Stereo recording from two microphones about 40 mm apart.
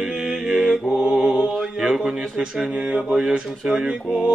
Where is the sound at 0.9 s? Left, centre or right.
Right.